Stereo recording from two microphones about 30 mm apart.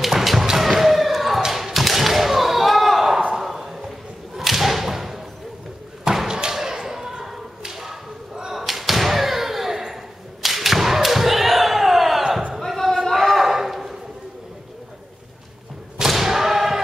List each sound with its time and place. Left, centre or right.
0.0 s a sound: centre
0.6 s slam: centre
1.5 s thump: centre
3.3 s a sound: centre
4.4 s whip: centre
6.2 s slam: right
7.6 s whip: centre
8.5 s thump: centre
10.4 s thump: centre
12.5 s a sound: centre
16.1 s thump: centre